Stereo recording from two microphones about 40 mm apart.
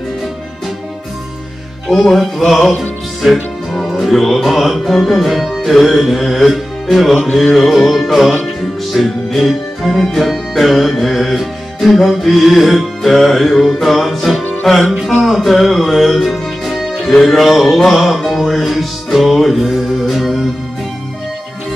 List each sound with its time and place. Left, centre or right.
1.9 s music: centre